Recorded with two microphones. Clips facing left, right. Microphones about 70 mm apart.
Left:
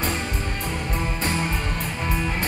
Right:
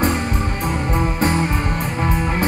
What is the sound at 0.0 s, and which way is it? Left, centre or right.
Music, right.